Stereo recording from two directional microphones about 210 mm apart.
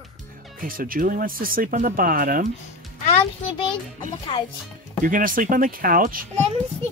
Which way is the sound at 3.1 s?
25° left (ahead or behind).